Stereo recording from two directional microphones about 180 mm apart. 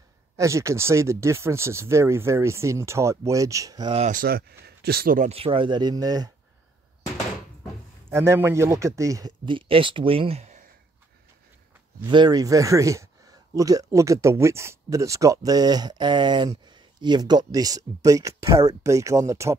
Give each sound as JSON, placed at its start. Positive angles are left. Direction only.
{"t": 0.4, "sound": "speech", "side_deg": -15}
{"t": 3.9, "sound": "speech", "side_deg": -45}
{"t": 5.3, "sound": "speech", "side_deg": -30}
{"t": 8.1, "sound": "speech", "side_deg": -15}
{"t": 12.1, "sound": "speech", "side_deg": -25}